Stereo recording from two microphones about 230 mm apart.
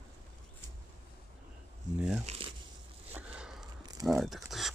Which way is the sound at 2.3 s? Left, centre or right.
Right.